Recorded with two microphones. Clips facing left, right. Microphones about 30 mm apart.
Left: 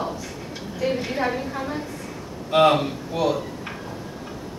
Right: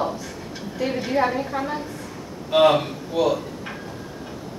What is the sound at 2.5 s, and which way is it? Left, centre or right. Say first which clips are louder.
Speech: right 1 dB; centre.